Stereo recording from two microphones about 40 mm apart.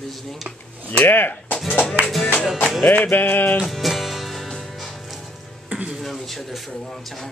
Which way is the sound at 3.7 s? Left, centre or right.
Centre.